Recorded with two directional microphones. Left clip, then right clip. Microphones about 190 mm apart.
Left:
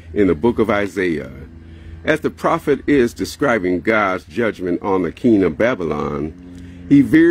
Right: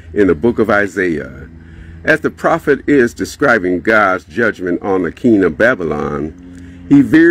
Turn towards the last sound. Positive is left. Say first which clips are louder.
# right 3 dB
turn(degrees=0)  # may be behind; listen again after turning